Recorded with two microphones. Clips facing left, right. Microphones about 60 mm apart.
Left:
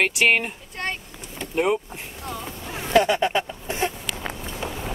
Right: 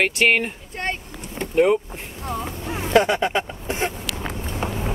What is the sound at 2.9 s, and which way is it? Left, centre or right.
Speech, right.